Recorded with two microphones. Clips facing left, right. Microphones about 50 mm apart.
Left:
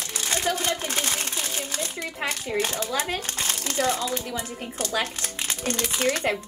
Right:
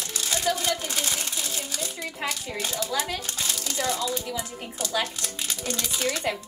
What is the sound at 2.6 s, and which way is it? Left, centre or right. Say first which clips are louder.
Speech: left 3 dB; left.